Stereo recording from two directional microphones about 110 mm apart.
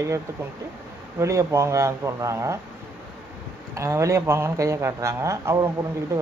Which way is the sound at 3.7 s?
25° right (ahead or behind).